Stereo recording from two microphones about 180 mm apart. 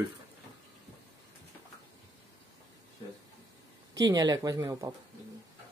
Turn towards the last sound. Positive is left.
turn(degrees=-20)  # may be behind; listen again after turning